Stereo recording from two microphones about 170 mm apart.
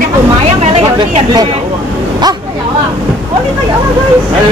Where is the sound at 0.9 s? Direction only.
25° right (ahead or behind).